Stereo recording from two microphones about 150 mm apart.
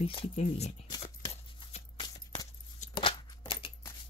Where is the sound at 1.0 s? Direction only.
40° left (ahead or behind).